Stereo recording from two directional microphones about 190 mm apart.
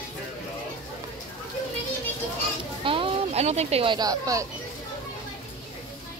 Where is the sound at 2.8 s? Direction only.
30° right (ahead or behind).